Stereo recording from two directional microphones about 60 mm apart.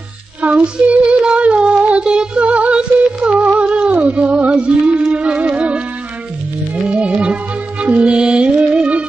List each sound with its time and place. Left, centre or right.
0.4 s music: right